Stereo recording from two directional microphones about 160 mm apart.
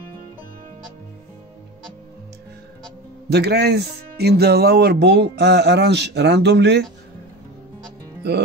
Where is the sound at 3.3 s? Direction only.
90° right.